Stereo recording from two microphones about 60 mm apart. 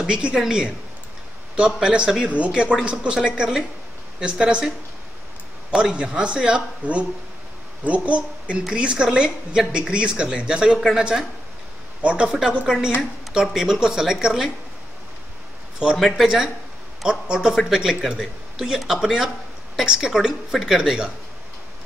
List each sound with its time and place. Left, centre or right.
0.0 s a woman's voice: centre
1.8 s a woman's voice: centre
12.0 s speech: right
12.3 s a woman's voice: centre
16.2 s a woman's voice: centre